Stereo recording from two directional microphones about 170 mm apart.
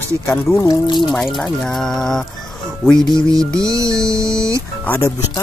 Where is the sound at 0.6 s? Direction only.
25° left (ahead or behind).